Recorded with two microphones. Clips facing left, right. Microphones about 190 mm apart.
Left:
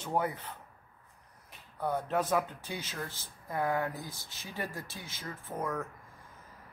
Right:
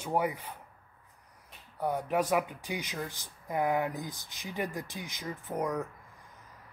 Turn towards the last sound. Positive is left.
turn(degrees=-15)  # may be behind; listen again after turning